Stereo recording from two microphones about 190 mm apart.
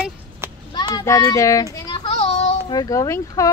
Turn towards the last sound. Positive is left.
turn(degrees=15)  # may be behind; listen again after turning